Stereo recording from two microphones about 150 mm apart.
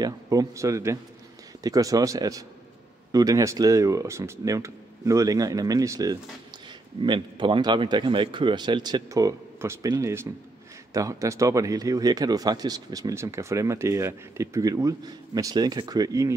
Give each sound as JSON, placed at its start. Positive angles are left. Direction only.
{"t": 0.0, "sound": "speech", "side_deg": -20}